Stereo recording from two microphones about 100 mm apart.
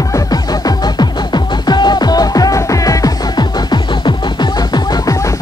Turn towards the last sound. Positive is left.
turn(degrees=45)  # may be behind; listen again after turning